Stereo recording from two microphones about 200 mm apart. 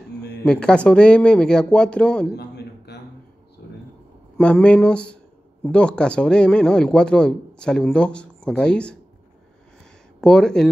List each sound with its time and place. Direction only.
0.4 s speech: 5° left (ahead or behind)
2.3 s a sound: 55° left (ahead or behind)
4.4 s speech: 5° left (ahead or behind)
10.2 s speech: 5° left (ahead or behind)